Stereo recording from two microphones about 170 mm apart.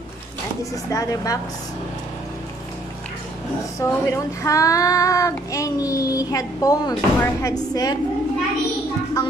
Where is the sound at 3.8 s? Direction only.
20° left (ahead or behind).